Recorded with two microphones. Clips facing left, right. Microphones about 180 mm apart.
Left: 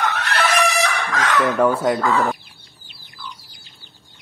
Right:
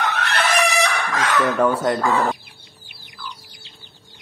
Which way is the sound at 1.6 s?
10° left (ahead or behind).